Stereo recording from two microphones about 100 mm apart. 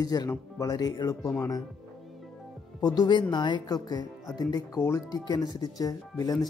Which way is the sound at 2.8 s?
45° left (ahead or behind).